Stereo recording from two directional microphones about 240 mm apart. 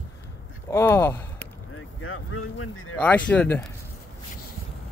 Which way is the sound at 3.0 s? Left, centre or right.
Centre.